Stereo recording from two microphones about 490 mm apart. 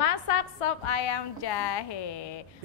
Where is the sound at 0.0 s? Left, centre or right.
Left.